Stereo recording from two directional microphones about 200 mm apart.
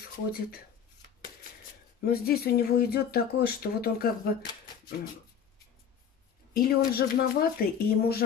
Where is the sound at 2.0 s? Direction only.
50° left (ahead or behind).